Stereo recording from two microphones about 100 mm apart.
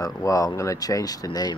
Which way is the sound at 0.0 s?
35° left (ahead or behind).